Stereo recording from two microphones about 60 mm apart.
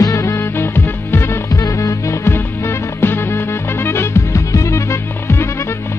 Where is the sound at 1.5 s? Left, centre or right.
Left.